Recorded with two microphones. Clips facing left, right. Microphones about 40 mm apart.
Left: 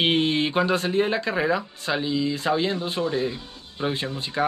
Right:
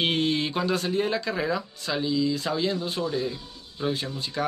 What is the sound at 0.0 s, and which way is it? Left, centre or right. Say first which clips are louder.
Speech: left 3 dB; left.